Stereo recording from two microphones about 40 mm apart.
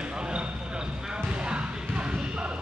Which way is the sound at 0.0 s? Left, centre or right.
Right.